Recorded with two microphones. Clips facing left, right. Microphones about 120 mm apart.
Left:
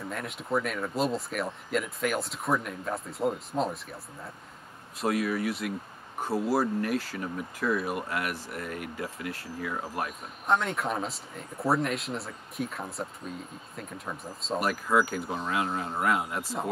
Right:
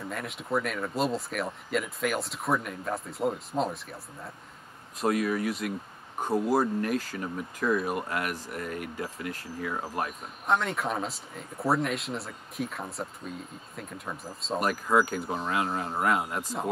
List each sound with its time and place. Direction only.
0.1 s speech: centre (ahead or behind)